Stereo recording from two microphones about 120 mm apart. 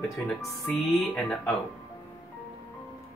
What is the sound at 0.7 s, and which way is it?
Speech, centre (ahead or behind).